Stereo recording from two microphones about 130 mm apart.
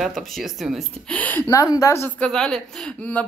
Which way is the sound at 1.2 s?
10° left (ahead or behind).